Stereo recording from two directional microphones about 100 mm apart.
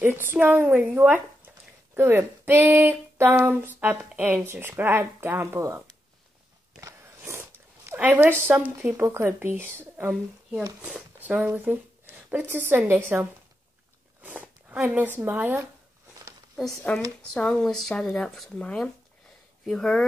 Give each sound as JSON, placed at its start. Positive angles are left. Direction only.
{"t": 0.0, "sound": "speech", "side_deg": -20}
{"t": 7.8, "sound": "a woman's voice", "side_deg": -20}
{"t": 8.7, "sound": "speech", "side_deg": -30}
{"t": 16.5, "sound": "speech", "side_deg": 0}